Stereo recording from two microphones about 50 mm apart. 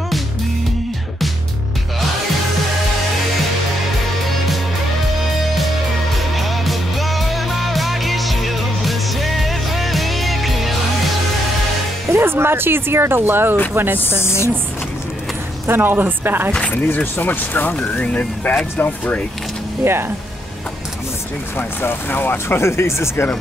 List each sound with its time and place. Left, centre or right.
6.1 s music: centre
12.1 s speech: right
13.9 s speech: left
15.6 s speech: right
16.7 s speech: left
19.8 s speech: right
21.5 s speech: left
22.6 s speech: left